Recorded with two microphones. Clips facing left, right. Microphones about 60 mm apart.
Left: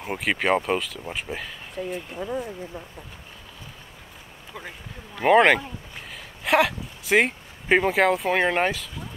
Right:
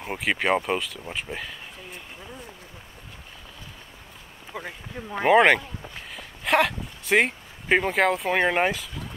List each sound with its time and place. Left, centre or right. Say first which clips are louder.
0.0 s speech: left 1 dB; centre
2.2 s speech: left 16 dB; left
4.5 s speech: right 4 dB; centre